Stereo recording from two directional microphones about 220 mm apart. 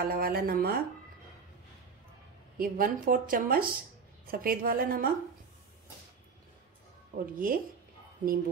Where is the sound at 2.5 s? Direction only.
40° right (ahead or behind).